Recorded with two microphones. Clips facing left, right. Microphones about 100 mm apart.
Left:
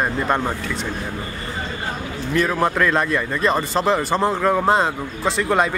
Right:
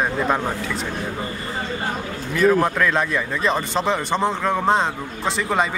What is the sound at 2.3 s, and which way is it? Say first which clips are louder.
Speech: right 2 dB; centre (ahead or behind).